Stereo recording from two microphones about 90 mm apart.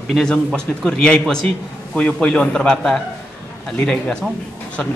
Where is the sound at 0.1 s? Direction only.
5° left (ahead or behind).